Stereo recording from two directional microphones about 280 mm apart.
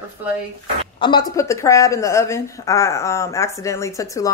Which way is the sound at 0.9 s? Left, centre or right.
Centre.